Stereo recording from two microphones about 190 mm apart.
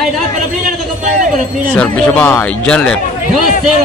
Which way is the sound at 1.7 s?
5° left (ahead or behind).